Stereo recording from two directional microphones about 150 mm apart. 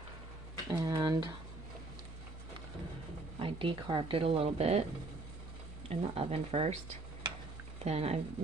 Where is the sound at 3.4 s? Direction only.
35° right (ahead or behind).